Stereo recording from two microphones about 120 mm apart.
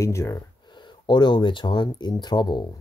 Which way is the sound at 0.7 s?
40° left (ahead or behind).